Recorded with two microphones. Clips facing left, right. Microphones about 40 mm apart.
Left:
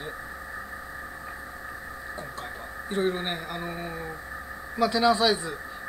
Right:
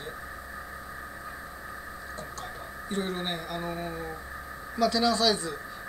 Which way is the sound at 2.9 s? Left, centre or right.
Centre.